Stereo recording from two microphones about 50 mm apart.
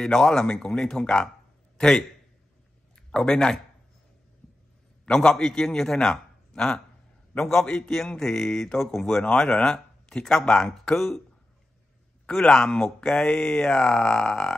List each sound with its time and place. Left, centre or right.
0.0 s speech: centre
3.1 s speech: centre
5.0 s a man's voice: centre
9.2 s speech: centre
12.3 s speech: centre